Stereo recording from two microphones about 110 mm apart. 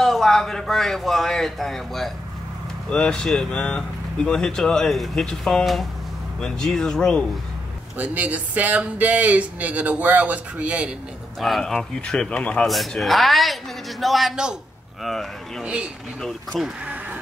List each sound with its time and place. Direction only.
0.0 s a man's voice: 5° left (ahead or behind)
8.0 s speech: 15° right (ahead or behind)
11.3 s a man's voice: centre (ahead or behind)
15.6 s a man's voice: 10° right (ahead or behind)
16.8 s a sound: 15° right (ahead or behind)